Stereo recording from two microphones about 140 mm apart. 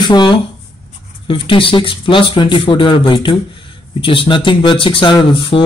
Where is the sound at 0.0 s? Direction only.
35° left (ahead or behind).